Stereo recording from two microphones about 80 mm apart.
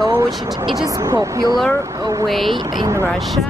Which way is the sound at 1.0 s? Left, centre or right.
Right.